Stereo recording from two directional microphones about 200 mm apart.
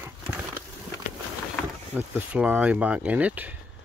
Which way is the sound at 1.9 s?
10° right (ahead or behind).